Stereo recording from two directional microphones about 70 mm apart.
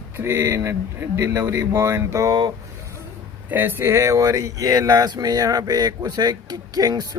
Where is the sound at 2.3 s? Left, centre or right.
Right.